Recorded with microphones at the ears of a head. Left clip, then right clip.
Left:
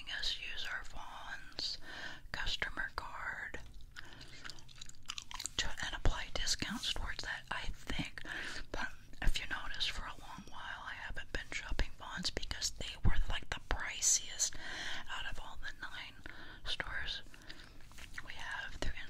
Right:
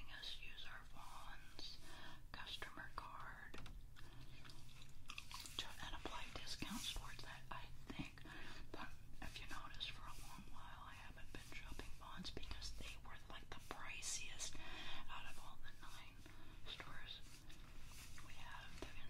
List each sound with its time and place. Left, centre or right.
0.0 s whispering: left